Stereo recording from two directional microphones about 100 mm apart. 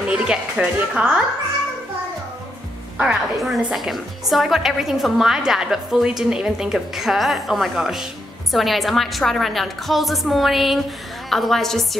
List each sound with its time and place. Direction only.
0.2 s a woman's voice: 10° right (ahead or behind)
3.0 s a woman's voice: 5° right (ahead or behind)